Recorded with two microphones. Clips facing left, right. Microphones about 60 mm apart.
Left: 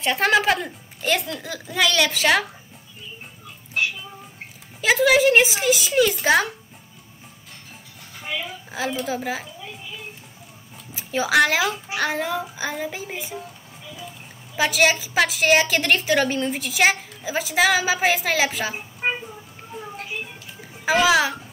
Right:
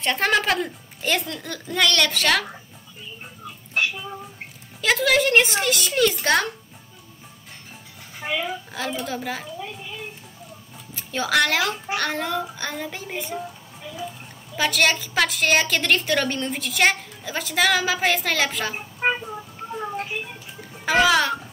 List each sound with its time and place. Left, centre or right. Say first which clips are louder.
0.0 s a woman's voice: left 2 dB; centre
4.8 s a woman's voice: left 3 dB; centre
8.2 s a sound: right 3 dB; right
8.7 s a woman's voice: left 5 dB; centre
11.0 s a woman's voice: left 3 dB; centre
14.5 s a woman's voice: left 2 dB; centre
18.9 s a sound: right 4 dB; right
20.7 s a child's voice: even; centre